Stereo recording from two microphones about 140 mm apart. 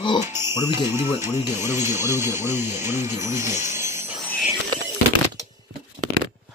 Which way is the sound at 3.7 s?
20° right (ahead or behind).